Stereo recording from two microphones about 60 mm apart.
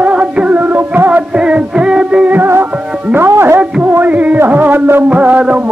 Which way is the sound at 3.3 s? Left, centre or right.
Right.